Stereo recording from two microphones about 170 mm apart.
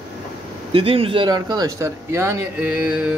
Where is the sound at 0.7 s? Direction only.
35° right (ahead or behind).